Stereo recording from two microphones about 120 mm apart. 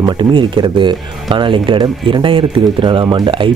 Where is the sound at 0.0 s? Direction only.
40° right (ahead or behind).